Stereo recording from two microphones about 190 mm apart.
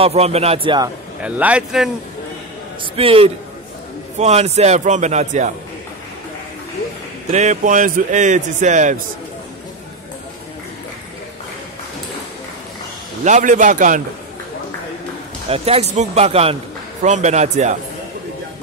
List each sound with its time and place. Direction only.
0.0 s speech: 35° right (ahead or behind)
1.2 s a man's voice: 5° right (ahead or behind)
2.8 s a man's voice: 30° right (ahead or behind)
7.2 s speech: 35° right (ahead or behind)
13.2 s a man's voice: 40° right (ahead or behind)
15.5 s speech: 30° right (ahead or behind)